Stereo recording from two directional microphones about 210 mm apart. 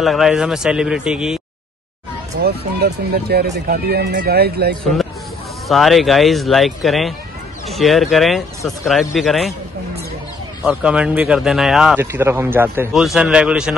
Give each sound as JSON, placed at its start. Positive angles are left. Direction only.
{"t": 0.0, "sound": "speech", "side_deg": 0}
{"t": 2.4, "sound": "speech", "side_deg": -50}
{"t": 5.7, "sound": "speech", "side_deg": 0}
{"t": 10.6, "sound": "speech", "side_deg": -5}